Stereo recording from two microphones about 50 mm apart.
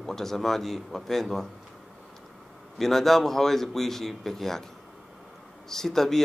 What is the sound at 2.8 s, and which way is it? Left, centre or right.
Speech, centre.